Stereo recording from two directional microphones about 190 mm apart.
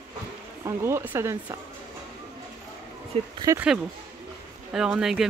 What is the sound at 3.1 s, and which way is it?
Speech, 30° right (ahead or behind).